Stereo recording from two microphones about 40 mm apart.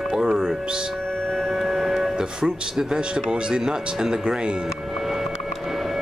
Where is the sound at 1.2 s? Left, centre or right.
Centre.